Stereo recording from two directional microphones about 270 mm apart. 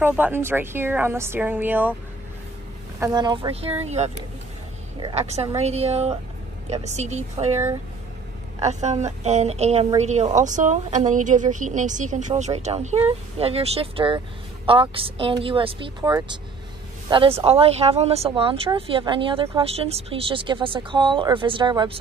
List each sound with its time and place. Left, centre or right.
0.0 s a woman's voice: centre
3.0 s a woman's voice: centre
7.5 s a woman's voice: centre
8.5 s speech: right